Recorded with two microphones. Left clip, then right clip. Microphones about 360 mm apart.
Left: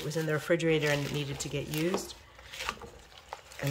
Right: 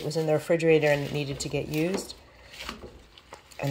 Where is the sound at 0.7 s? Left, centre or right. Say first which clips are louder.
Right 7 dB; centre.